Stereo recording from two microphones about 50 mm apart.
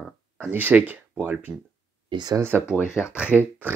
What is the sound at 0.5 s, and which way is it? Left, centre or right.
Speech, right.